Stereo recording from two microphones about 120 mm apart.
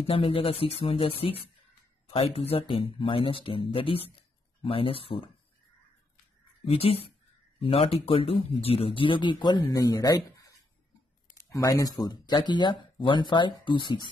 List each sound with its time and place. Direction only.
0.0 s speech: 50° left (ahead or behind)
6.6 s speech: 55° left (ahead or behind)